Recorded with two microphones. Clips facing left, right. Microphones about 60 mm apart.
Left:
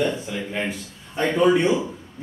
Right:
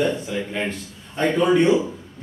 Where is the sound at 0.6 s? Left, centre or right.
Centre.